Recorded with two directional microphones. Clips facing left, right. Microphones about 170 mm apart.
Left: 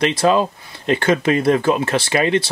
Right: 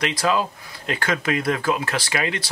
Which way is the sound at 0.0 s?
25° left (ahead or behind).